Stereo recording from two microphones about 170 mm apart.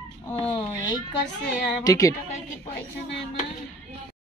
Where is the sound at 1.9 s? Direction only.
20° left (ahead or behind).